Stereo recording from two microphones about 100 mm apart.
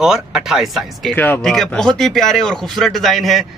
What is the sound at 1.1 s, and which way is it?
Speech, 20° left (ahead or behind).